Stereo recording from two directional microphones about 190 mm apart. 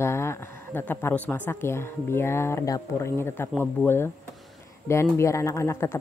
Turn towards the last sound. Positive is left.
turn(degrees=15)  # may be behind; listen again after turning